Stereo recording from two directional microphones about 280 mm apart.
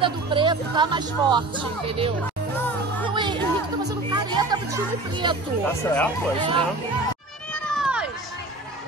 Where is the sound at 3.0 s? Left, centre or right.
Centre.